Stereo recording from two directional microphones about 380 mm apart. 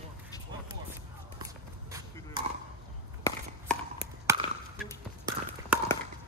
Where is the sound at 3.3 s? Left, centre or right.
Centre.